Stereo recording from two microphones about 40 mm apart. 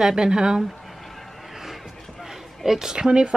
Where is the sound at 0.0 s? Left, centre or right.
Centre.